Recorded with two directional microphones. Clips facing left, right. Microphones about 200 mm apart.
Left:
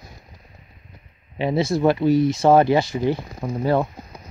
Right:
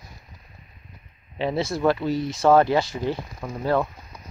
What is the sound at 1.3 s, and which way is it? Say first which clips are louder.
Speech: left 4 dB; 15° left (ahead or behind).